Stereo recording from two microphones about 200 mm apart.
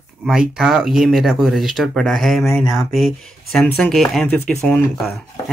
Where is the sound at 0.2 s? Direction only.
5° right (ahead or behind).